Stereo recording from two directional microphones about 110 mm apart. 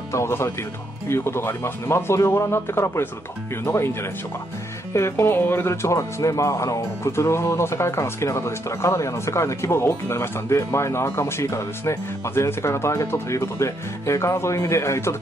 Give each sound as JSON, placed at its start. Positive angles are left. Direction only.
{"t": 0.1, "sound": "speech", "side_deg": 25}
{"t": 4.9, "sound": "speech", "side_deg": 25}